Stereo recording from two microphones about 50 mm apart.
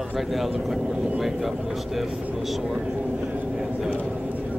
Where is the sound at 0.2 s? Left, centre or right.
Centre.